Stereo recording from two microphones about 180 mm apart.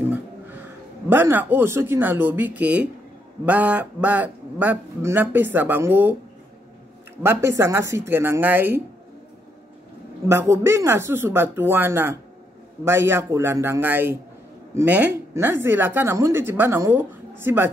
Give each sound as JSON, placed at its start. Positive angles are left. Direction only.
{"t": 1.0, "sound": "speech", "side_deg": -10}
{"t": 7.2, "sound": "speech", "side_deg": -15}
{"t": 10.2, "sound": "speech", "side_deg": -15}